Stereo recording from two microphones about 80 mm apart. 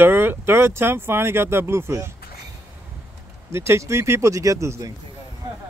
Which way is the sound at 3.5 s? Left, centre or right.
Right.